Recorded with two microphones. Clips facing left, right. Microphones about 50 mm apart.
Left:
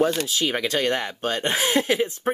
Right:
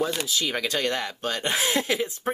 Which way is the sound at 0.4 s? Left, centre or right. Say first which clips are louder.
Left 2 dB; left.